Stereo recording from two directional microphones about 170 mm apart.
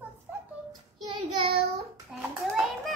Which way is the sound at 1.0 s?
30° right (ahead or behind).